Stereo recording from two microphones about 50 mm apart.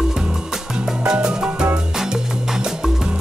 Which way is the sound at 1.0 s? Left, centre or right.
Centre.